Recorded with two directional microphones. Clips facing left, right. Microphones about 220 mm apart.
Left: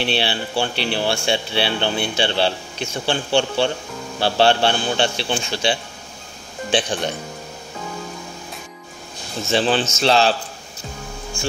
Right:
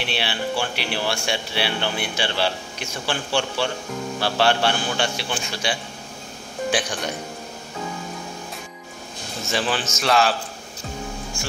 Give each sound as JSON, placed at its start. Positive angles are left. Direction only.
{"t": 0.0, "sound": "speech", "side_deg": 30}
{"t": 9.5, "sound": "speech", "side_deg": 25}